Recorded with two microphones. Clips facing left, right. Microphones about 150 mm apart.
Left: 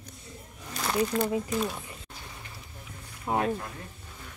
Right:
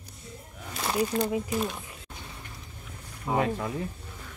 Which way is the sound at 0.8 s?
5° right (ahead or behind).